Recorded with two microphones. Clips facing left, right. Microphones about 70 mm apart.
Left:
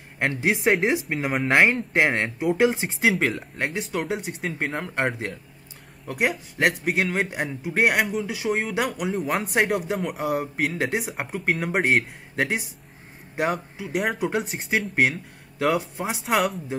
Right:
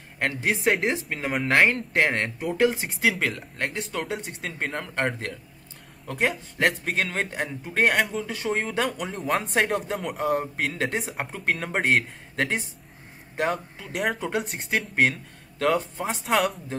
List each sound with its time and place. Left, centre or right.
0.7 s speech: centre
0.9 s speech: centre
3.2 s speech: centre
4.6 s speech: centre